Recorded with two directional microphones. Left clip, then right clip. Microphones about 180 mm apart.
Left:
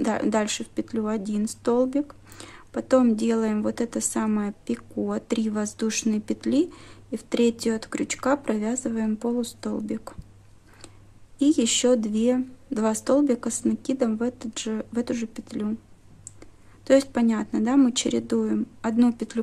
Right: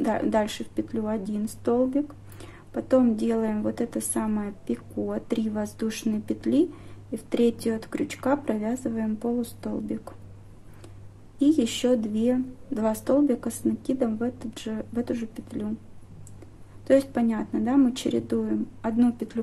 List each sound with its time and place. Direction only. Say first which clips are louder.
0.0 s speech: even; 30° left (ahead or behind)
11.3 s speech: left 1 dB; 35° left (ahead or behind)
16.8 s speech: left 2 dB; 35° left (ahead or behind)